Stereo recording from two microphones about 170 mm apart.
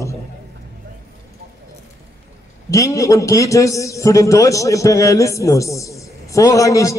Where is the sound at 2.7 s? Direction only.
20° left (ahead or behind).